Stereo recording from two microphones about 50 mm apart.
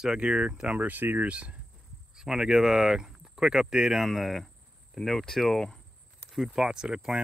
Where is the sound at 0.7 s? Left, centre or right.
Right.